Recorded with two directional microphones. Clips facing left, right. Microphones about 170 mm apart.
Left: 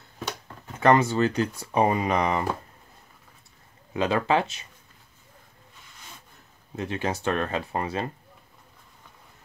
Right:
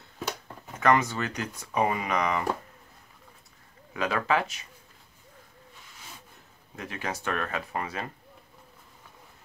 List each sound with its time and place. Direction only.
0.7 s speech: 30° left (ahead or behind)
3.9 s speech: 25° left (ahead or behind)
6.8 s speech: 30° left (ahead or behind)